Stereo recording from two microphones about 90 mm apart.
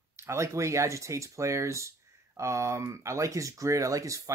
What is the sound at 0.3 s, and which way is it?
Speech, 35° right (ahead or behind).